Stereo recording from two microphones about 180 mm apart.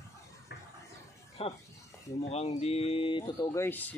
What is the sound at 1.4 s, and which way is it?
Speech, 35° left (ahead or behind).